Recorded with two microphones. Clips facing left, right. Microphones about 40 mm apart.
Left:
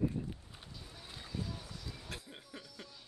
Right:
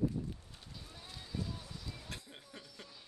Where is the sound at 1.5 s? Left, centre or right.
Centre.